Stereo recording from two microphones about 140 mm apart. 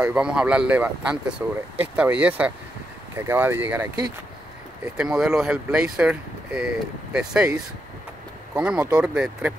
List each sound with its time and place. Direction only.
0.0 s speech: 5° right (ahead or behind)
4.9 s speech: 5° right (ahead or behind)
8.5 s speech: 5° right (ahead or behind)